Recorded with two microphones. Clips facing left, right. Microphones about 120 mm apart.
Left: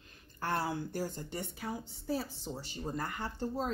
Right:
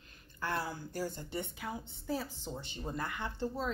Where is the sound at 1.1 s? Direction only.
40° left (ahead or behind).